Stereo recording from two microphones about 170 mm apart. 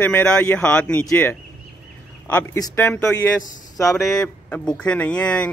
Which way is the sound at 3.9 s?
5° left (ahead or behind).